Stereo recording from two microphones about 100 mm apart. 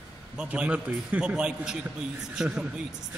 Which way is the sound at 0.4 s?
10° right (ahead or behind).